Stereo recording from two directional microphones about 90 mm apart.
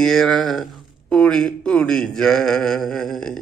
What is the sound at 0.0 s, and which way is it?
Speech, 5° left (ahead or behind).